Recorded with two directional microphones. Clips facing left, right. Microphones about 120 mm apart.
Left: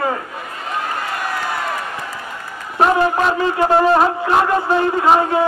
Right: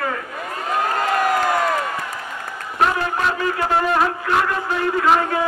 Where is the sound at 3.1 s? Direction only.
30° left (ahead or behind).